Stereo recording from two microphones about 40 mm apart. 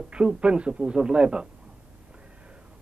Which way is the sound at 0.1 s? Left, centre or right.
Right.